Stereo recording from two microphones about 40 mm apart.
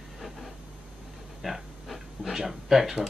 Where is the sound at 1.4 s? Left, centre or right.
Centre.